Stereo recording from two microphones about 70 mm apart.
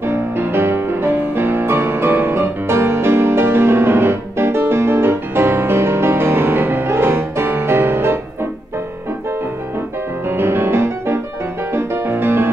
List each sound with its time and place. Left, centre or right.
0.0 s music: right
10.2 s music: right